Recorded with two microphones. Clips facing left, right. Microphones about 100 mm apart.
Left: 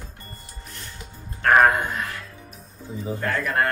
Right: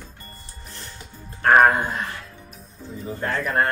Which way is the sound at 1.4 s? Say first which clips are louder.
Right 1 dB; 30° right (ahead or behind).